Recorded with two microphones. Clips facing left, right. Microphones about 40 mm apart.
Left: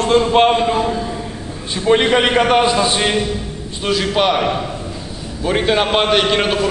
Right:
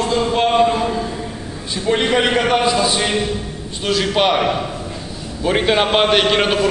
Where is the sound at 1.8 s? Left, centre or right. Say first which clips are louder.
Left 3 dB; left.